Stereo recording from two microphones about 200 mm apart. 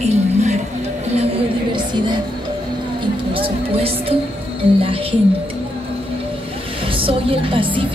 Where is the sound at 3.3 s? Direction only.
30° right (ahead or behind).